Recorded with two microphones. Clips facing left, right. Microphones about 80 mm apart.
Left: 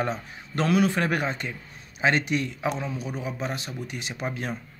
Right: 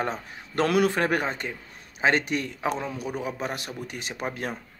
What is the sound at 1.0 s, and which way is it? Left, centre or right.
Speech, right.